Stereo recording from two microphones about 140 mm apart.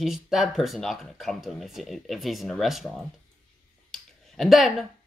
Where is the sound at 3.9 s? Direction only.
Centre (ahead or behind).